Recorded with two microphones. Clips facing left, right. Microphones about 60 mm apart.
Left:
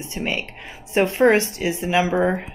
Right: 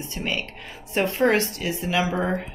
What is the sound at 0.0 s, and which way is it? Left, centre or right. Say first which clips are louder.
A woman's voice: left 2 dB; left.